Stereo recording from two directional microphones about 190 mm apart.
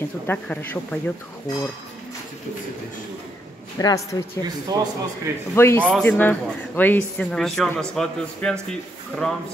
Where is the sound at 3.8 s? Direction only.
20° left (ahead or behind).